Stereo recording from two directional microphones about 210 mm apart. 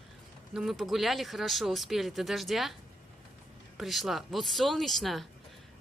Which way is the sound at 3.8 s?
Centre (ahead or behind).